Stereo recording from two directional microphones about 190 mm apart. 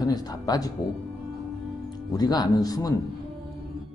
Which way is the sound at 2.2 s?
20° left (ahead or behind).